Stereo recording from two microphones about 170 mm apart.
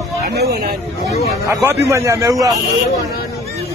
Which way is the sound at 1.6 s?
15° right (ahead or behind).